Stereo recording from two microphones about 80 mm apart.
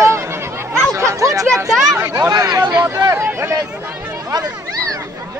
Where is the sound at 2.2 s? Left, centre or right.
Right.